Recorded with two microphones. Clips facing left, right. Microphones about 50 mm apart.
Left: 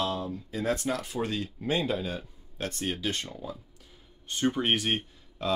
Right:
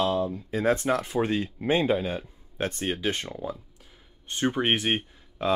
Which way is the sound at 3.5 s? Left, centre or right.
Centre.